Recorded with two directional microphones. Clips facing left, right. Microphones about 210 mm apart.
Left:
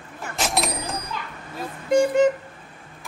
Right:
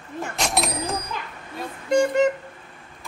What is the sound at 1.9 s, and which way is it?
Vehicle, centre (ahead or behind).